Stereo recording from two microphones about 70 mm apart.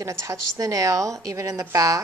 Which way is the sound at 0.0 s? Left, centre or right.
Right.